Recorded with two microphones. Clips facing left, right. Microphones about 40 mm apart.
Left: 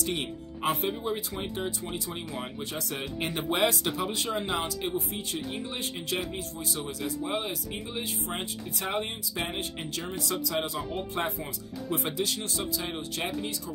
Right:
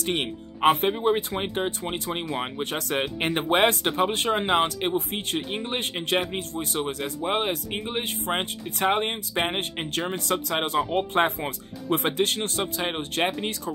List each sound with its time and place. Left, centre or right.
0.0 s speech: right